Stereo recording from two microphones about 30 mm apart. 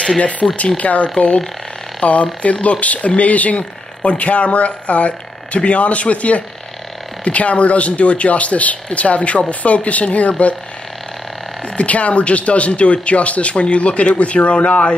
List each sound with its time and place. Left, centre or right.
0.2 s speech: left
11.6 s speech: left